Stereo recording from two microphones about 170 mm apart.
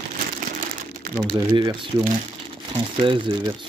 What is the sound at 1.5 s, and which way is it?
Speech, 25° right (ahead or behind).